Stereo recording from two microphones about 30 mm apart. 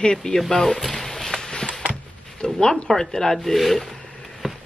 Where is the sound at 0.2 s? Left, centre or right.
Left.